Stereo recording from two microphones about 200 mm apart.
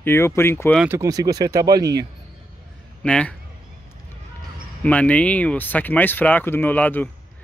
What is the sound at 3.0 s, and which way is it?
Speech, 5° left (ahead or behind).